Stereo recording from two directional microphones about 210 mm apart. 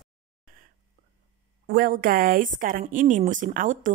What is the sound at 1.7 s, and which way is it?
Speech, 45° right (ahead or behind).